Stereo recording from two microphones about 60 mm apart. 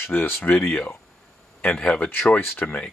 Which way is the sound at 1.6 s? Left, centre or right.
Centre.